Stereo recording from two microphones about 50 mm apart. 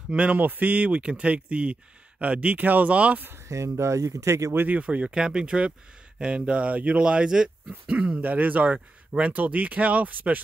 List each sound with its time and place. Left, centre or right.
0.1 s speech: right
0.4 s speech: right
3.4 s speech: right
4.6 s speech: right; by 7.9 s centre
7.9 s speech: right